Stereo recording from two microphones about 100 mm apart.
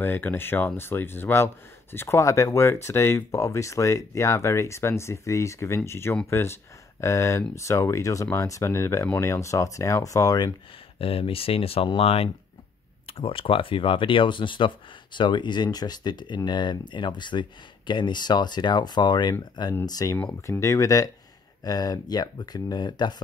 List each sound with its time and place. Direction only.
0.0 s speech: 20° left (ahead or behind); by 10.5 s 40° left (ahead or behind)
11.0 s speech: 65° left (ahead or behind)
13.2 s speech: 65° left (ahead or behind); by 23.2 s 45° left (ahead or behind)